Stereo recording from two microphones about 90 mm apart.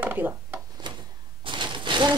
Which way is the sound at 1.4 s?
65° right (ahead or behind).